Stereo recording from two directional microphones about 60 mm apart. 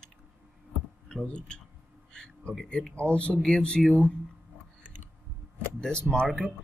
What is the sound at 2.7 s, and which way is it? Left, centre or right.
Speech, centre.